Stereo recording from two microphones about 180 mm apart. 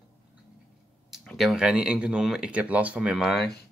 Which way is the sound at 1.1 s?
Centre (ahead or behind).